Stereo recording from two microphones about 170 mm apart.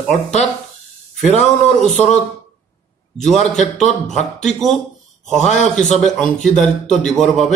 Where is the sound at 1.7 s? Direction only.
5° left (ahead or behind).